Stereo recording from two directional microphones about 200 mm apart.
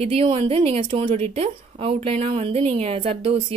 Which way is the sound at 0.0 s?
30° right (ahead or behind).